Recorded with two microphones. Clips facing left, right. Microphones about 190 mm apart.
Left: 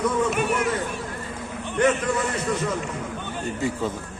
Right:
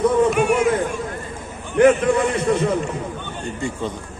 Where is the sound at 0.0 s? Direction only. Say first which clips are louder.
Right 7 dB; 60° right (ahead or behind).